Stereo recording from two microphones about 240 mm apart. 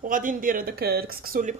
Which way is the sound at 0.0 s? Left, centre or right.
Right.